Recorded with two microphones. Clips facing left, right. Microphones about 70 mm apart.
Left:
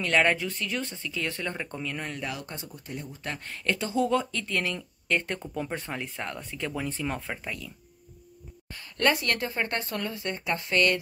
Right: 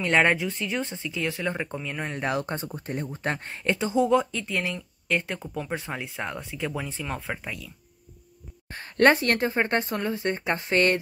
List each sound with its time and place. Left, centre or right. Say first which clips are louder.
0.0 s speech: right 2 dB; right
2.1 s speech: right 8 dB; right; by 7.7 s centre
8.7 s speech: right 6 dB; right